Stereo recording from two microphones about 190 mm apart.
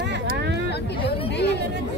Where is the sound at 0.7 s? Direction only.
60° left (ahead or behind).